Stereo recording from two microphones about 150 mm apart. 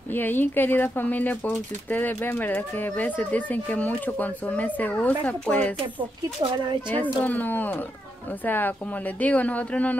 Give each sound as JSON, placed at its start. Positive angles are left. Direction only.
{"t": 0.1, "sound": "speech", "side_deg": 15}
{"t": 6.4, "sound": "speech", "side_deg": -30}
{"t": 7.0, "sound": "speech", "side_deg": 10}